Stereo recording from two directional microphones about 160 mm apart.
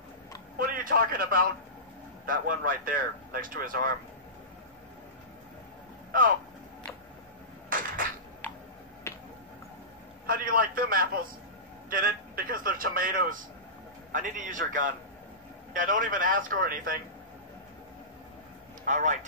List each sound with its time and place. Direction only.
0.6 s a man's voice: 60° right (ahead or behind)
7.7 s a sound: 60° right (ahead or behind)
9.1 s finger snapping: 15° left (ahead or behind)
10.2 s a man's voice: 65° right (ahead or behind)
18.9 s speech: 50° right (ahead or behind)